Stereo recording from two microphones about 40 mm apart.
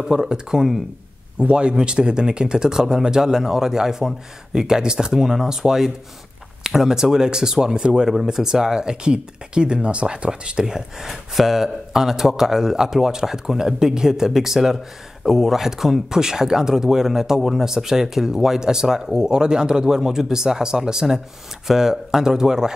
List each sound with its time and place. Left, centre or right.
0.0 s speech: centre
1.4 s speech: right